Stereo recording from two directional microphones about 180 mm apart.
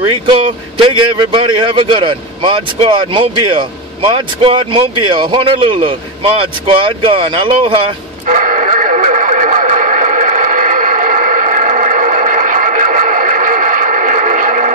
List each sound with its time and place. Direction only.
0.0 s a man's voice: 30° right (ahead or behind)
8.3 s radio: 45° right (ahead or behind)